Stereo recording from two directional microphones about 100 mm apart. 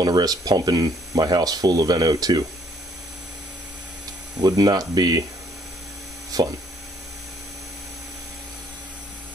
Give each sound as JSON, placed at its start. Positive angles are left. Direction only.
{"t": 0.0, "sound": "speech", "side_deg": -40}
{"t": 4.4, "sound": "speech", "side_deg": -40}
{"t": 6.3, "sound": "speech", "side_deg": -40}